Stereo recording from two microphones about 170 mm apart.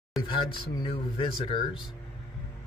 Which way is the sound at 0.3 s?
30° left (ahead or behind).